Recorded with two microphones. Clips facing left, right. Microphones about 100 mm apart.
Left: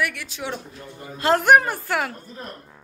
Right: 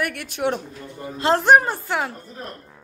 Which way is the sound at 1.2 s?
30° right (ahead or behind).